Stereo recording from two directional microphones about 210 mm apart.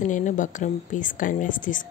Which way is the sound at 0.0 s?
35° left (ahead or behind).